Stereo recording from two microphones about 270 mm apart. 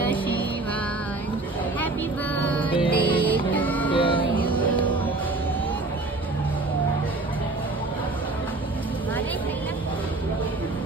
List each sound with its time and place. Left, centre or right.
2.3 s music: centre
3.9 s music: centre